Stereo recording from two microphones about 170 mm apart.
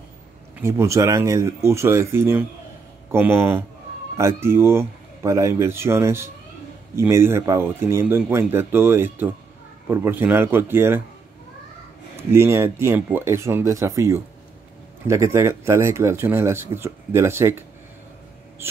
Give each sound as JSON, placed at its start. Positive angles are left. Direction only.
{"t": 0.6, "sound": "speech", "side_deg": -15}
{"t": 12.2, "sound": "speech", "side_deg": -15}